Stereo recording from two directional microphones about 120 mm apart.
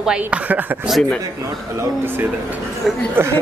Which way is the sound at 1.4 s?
25° right (ahead or behind).